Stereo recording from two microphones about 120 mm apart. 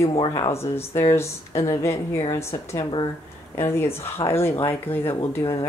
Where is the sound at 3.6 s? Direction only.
20° left (ahead or behind).